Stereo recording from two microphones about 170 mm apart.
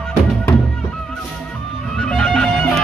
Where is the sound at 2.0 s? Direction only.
5° left (ahead or behind).